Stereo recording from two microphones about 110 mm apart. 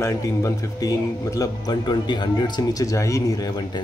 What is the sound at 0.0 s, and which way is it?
A man's voice, 30° left (ahead or behind).